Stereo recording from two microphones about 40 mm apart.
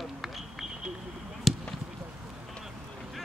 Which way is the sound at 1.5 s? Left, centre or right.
Centre.